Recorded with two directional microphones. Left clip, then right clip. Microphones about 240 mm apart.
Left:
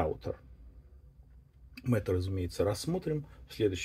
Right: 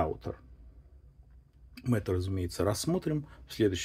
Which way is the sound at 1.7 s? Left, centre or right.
Centre.